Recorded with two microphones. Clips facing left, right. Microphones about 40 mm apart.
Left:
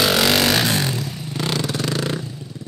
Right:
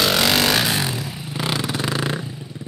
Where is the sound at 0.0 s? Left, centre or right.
Centre.